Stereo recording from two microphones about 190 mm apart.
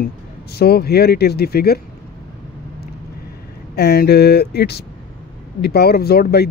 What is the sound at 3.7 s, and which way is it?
Speech, 60° left (ahead or behind).